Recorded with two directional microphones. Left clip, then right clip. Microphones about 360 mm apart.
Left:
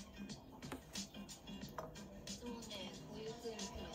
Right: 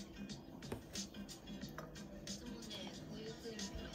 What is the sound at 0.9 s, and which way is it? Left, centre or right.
Music, centre.